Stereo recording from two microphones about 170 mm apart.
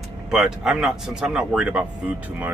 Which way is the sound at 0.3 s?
5° right (ahead or behind).